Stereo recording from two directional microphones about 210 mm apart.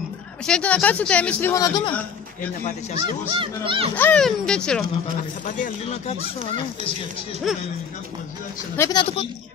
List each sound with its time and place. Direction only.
0.5 s speech: 5° left (ahead or behind)
3.0 s speech: 25° right (ahead or behind)
3.9 s speech: 5° left (ahead or behind)
5.6 s speech: 30° left (ahead or behind)
7.5 s speech: centre (ahead or behind)
8.7 s speech: 15° left (ahead or behind)